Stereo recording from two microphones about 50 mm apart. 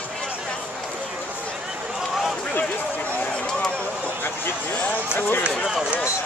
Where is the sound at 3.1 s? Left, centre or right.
Left.